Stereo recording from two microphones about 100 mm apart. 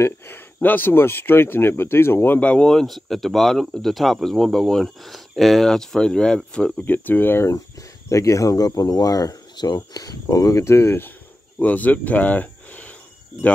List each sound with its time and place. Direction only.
0.0 s speech: 20° left (ahead or behind)
11.6 s speech: 15° left (ahead or behind)